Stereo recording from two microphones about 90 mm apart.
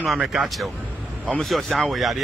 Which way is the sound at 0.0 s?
5° right (ahead or behind).